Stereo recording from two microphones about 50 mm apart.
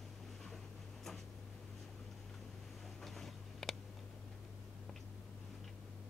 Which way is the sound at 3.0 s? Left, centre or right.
Centre.